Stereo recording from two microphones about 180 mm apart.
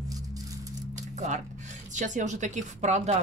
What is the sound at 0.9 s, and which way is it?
Music, 40° right (ahead or behind).